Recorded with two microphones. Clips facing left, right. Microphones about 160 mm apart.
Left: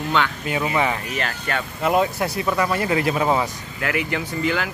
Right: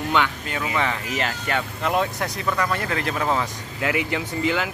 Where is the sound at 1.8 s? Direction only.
5° left (ahead or behind).